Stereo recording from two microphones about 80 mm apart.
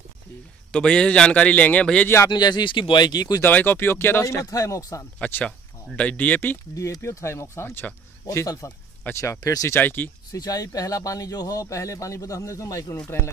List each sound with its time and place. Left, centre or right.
0.7 s a man's voice: centre
2.2 s speech: left
3.4 s speech: left
5.2 s speech: centre
6.7 s speech: left
9.8 s speech: left
10.3 s speech: left